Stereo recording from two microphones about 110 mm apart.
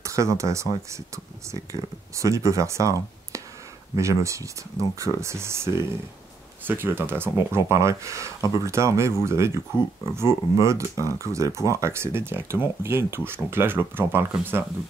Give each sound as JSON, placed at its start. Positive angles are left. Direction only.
{"t": 0.0, "sound": "speech", "side_deg": -30}